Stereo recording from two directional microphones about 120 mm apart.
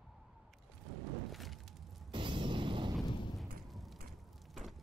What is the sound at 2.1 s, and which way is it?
Music, 45° right (ahead or behind).